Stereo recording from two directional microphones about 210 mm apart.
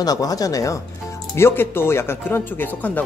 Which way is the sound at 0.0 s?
15° left (ahead or behind).